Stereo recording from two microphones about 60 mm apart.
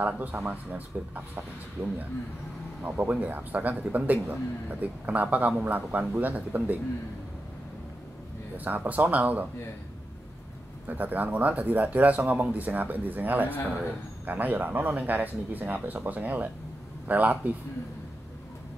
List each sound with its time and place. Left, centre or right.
0.3 s speech: right
8.5 s speech: right
10.9 s speech: right